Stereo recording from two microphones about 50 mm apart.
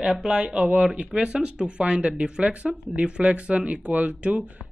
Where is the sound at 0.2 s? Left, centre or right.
Centre.